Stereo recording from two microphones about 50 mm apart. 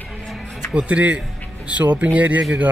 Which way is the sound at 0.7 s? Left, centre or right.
Right.